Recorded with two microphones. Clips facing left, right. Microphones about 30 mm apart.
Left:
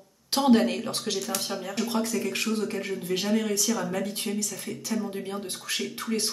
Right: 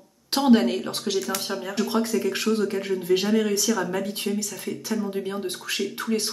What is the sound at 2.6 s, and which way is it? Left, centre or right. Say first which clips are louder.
A man's voice: right 6 dB; right.